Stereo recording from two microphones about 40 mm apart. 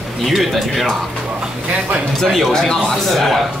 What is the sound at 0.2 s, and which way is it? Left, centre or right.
Speech, centre.